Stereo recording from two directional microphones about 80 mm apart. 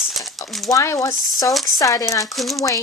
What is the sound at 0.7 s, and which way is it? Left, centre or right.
Speech, left.